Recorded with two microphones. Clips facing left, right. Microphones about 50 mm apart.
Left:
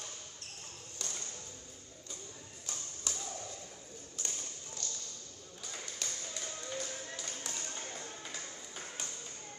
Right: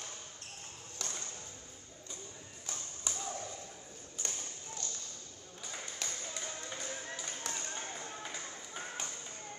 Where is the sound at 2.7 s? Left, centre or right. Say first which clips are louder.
Right 1 dB; right.